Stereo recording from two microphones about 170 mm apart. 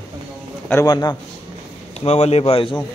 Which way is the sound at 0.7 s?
20° left (ahead or behind).